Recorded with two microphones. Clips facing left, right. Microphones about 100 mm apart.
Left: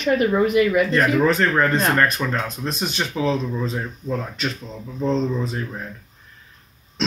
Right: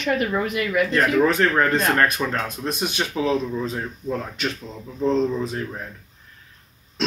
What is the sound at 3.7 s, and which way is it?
Speech, centre (ahead or behind).